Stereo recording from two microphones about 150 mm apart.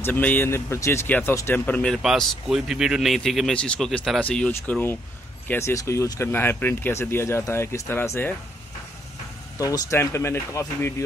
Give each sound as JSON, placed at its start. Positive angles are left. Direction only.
{"t": 0.0, "sound": "speech", "side_deg": 10}
{"t": 9.6, "sound": "speech", "side_deg": 25}